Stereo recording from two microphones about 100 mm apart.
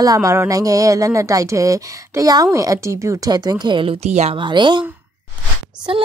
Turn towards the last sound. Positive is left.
turn(degrees=-60)  # may be behind; listen again after turning